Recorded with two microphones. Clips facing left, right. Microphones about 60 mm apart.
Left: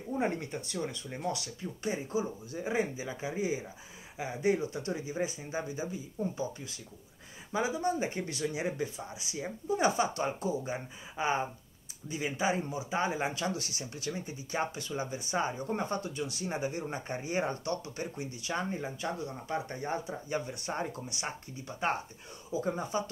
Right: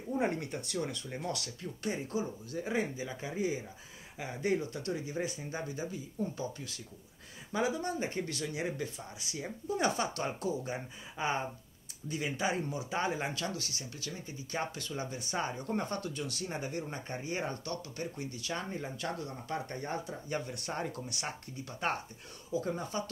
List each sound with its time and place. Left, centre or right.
0.1 s speech: centre
13.3 s speech: left